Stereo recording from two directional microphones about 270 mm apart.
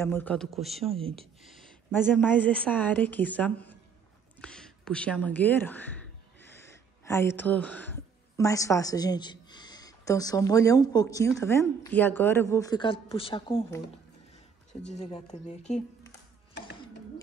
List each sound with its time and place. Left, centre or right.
0.0 s a woman's voice: centre
0.9 s speech: right
1.4 s a woman's voice: centre
15.0 s speech: left